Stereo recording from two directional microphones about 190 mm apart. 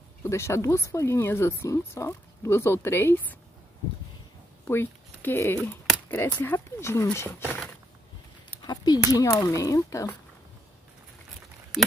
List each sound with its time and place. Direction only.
0.2 s speech: 15° left (ahead or behind)
4.6 s speech: 10° left (ahead or behind)
8.6 s speech: 20° left (ahead or behind)